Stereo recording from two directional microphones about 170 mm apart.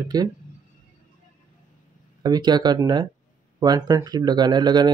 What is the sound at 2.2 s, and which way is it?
Speech, 25° right (ahead or behind).